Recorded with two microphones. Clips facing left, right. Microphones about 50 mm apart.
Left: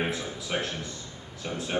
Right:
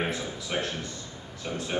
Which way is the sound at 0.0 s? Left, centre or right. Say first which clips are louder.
Even; centre.